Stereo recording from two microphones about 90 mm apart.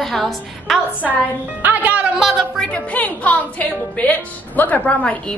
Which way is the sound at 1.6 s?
15° right (ahead or behind).